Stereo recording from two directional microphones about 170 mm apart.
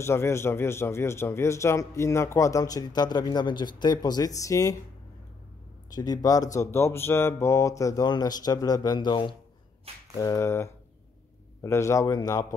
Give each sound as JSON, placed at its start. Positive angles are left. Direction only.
{"t": 0.0, "sound": "a man's voice", "side_deg": 15}
{"t": 5.9, "sound": "a man's voice", "side_deg": 20}